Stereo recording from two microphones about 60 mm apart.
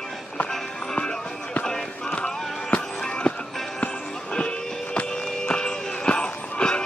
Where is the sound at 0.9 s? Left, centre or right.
Centre.